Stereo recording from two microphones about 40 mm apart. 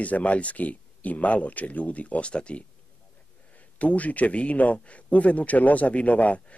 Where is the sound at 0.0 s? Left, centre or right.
Left.